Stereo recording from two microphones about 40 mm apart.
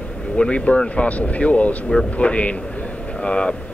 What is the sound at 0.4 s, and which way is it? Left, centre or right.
Speech, left.